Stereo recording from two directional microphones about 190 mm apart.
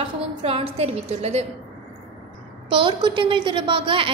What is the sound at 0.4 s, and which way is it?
A woman's voice, 30° right (ahead or behind).